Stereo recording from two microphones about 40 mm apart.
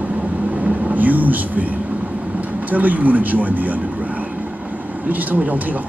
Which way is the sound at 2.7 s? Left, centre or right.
Right.